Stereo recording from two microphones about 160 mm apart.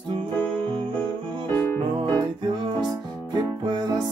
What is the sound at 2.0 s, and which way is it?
Music, 25° right (ahead or behind).